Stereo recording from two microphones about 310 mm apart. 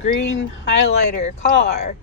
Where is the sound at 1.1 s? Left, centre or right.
Left.